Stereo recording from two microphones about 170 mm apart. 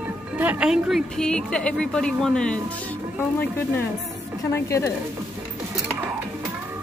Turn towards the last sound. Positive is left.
turn(degrees=15)  # may be behind; listen again after turning